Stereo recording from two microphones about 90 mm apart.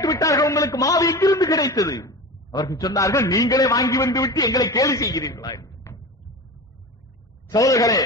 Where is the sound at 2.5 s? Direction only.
55° left (ahead or behind).